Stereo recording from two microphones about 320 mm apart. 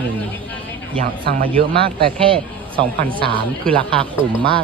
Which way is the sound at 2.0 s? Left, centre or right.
Centre.